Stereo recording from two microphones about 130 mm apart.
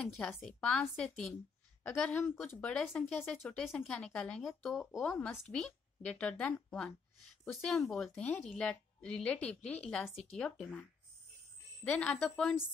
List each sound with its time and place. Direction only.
0.5 s a woman's voice: 5° left (ahead or behind)
7.9 s a woman's voice: 5° left (ahead or behind)